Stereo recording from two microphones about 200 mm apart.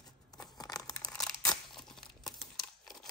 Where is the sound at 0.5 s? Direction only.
20° left (ahead or behind).